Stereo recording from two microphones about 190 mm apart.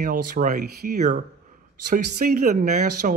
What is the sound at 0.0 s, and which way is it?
Speech, 45° right (ahead or behind).